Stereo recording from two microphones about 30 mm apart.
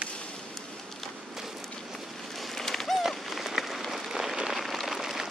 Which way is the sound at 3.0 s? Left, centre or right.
Centre.